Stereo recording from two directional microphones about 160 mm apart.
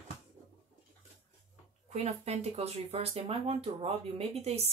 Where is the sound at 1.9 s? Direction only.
45° right (ahead or behind).